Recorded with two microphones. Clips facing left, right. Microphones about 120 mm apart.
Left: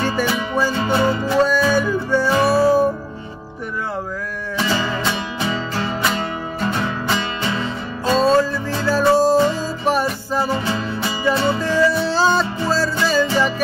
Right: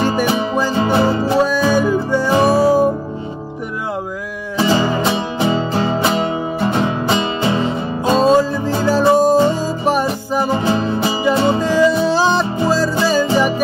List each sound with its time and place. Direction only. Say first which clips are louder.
0.0 s music: right 4 dB; 15° right (ahead or behind)
0.9 s music: right 2 dB; 30° right (ahead or behind)
1.4 s music: even; 15° right (ahead or behind)
4.6 s music: right 6 dB; 20° right (ahead or behind)